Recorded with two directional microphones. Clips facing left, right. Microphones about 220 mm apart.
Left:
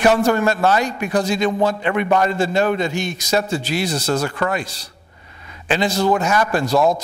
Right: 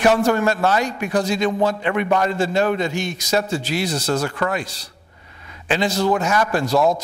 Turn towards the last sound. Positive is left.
turn(degrees=35)  # may be behind; listen again after turning